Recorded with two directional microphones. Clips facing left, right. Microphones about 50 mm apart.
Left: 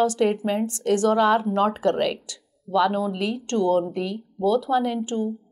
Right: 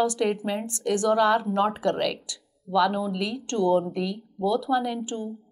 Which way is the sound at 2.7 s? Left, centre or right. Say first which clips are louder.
Left 1 dB; centre.